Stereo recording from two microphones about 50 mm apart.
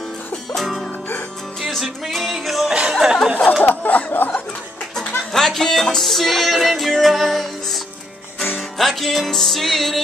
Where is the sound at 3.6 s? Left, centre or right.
Left.